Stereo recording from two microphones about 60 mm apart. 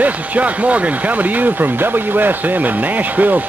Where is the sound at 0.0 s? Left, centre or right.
Right.